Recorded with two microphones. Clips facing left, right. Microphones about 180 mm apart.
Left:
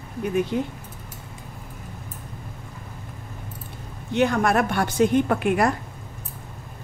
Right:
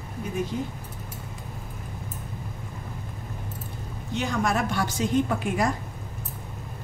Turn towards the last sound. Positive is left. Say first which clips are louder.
# left 4 dB
turn(degrees=65)  # may be behind; listen again after turning